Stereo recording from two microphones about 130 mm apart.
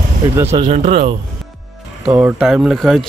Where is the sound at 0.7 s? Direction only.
55° right (ahead or behind).